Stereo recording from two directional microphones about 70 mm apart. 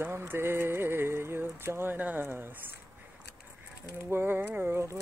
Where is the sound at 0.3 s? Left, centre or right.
Right.